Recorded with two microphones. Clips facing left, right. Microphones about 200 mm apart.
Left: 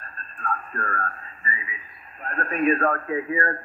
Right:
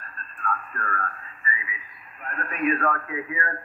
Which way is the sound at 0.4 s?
35° left (ahead or behind).